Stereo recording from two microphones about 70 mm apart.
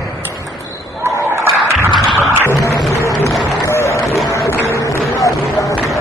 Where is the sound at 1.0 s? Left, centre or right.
Right.